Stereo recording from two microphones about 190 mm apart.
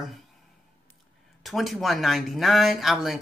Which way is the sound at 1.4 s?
Centre (ahead or behind).